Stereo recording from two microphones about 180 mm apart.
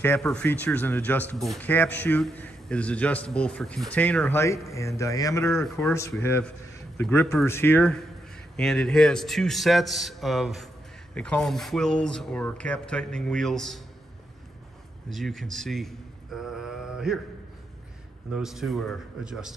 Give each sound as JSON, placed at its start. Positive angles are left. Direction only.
{"t": 0.0, "sound": "a man's voice", "side_deg": 10}
{"t": 5.6, "sound": "speech", "side_deg": 0}
{"t": 7.0, "sound": "a man's voice", "side_deg": 10}
{"t": 15.0, "sound": "a sound", "side_deg": 0}
{"t": 18.3, "sound": "speech", "side_deg": 0}